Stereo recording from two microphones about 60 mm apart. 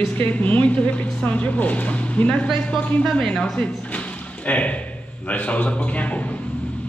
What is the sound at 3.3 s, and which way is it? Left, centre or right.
Speech, centre.